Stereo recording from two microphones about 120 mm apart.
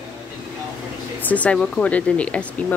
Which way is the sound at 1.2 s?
10° left (ahead or behind).